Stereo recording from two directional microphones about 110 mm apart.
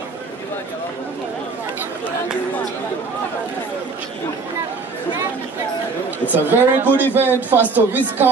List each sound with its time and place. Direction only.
6.3 s speech: 15° right (ahead or behind)